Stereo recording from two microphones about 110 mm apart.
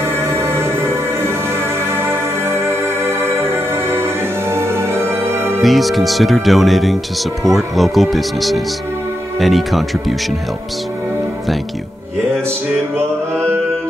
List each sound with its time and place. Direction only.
0.0 s music: 25° right (ahead or behind)
5.6 s speech: centre (ahead or behind)